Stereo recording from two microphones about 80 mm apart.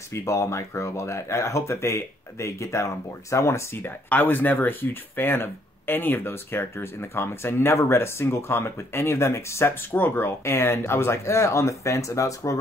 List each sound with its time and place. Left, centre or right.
0.1 s speech: left